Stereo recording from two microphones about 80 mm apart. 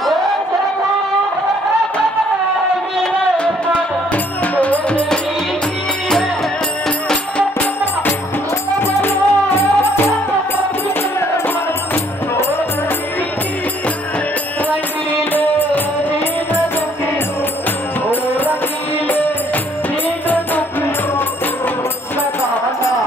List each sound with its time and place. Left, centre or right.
4.1 s music: centre
8.8 s music: left
15.3 s music: left
18.1 s music: left